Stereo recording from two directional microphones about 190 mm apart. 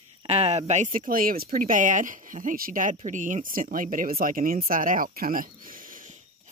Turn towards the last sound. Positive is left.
turn(degrees=-45)  # may be behind; listen again after turning